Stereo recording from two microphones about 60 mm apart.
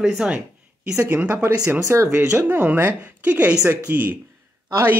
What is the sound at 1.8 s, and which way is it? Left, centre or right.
Speech, right.